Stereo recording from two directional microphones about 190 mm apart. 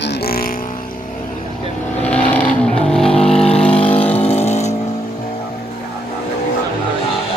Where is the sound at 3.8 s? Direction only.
30° left (ahead or behind).